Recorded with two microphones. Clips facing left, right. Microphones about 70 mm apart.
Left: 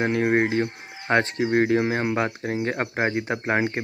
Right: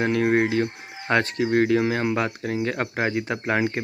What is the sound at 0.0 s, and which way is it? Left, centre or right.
Speech, left.